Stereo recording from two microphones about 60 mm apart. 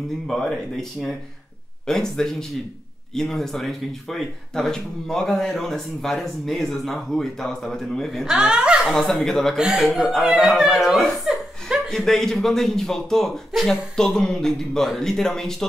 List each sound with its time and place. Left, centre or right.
0.3 s a man's voice: centre
8.4 s a woman's voice: centre
8.8 s speech: centre
9.6 s speech: centre
11.3 s laughter: centre
11.9 s a man's voice: centre